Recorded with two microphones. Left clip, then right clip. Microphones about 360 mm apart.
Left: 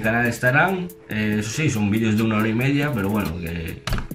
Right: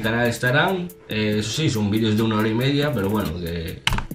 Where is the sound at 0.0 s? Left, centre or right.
Centre.